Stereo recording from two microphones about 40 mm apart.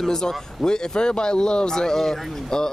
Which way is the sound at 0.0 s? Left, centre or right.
Centre.